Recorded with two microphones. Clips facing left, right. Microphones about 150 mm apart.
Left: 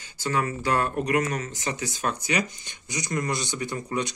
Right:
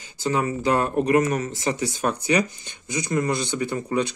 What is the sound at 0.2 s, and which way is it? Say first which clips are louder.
Speech: right 4 dB; 25° right (ahead or behind).